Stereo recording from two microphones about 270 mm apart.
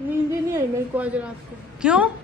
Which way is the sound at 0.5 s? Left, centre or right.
Centre.